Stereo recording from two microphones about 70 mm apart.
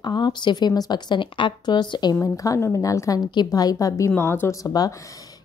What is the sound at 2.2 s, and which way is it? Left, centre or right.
A woman's voice, left.